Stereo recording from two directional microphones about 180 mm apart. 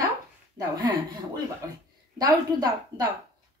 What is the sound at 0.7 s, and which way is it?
A woman's voice, 25° right (ahead or behind).